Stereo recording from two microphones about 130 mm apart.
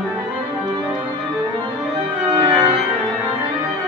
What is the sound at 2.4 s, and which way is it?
Organ, 45° right (ahead or behind).